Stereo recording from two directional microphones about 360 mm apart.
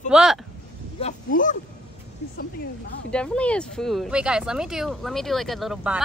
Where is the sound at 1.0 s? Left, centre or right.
Centre.